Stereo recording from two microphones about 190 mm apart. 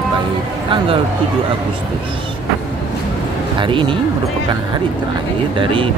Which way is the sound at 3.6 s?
25° right (ahead or behind).